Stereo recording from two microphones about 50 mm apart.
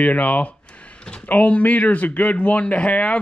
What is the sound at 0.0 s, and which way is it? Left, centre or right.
A man's voice, left.